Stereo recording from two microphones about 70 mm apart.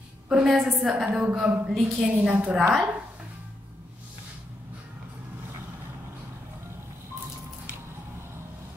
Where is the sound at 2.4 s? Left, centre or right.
Right.